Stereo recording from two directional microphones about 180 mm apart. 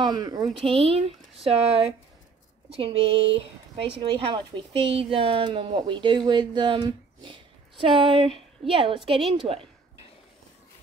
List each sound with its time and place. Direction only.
0.0 s speech: 25° right (ahead or behind)